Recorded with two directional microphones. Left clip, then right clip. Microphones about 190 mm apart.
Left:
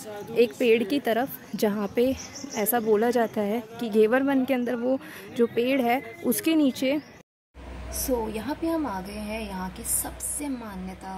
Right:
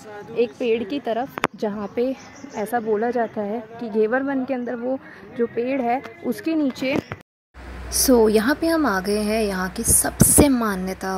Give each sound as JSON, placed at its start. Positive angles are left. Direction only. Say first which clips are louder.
{"t": 0.3, "sound": "a woman's voice", "louder": "even", "side_deg": 25}
{"t": 8.3, "sound": "a woman's voice", "louder": "right 10 dB", "side_deg": -40}